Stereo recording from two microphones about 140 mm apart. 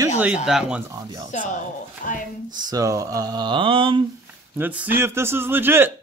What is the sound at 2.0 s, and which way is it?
Speech, 75° left (ahead or behind).